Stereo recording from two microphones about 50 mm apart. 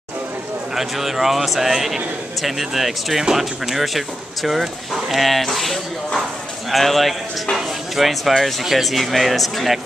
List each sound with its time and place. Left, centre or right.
0.7 s speech: centre